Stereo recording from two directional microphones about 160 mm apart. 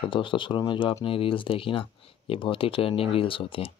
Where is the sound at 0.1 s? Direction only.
30° left (ahead or behind).